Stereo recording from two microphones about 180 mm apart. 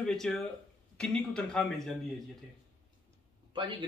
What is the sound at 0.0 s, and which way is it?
Speech, 5° left (ahead or behind).